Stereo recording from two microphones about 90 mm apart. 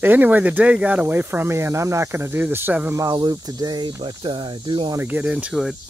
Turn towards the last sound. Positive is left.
turn(degrees=-10)  # may be behind; listen again after turning